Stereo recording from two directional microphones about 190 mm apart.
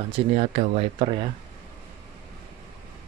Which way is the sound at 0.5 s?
30° right (ahead or behind).